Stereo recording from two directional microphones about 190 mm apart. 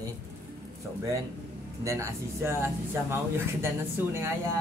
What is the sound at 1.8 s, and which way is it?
Speech, 15° right (ahead or behind).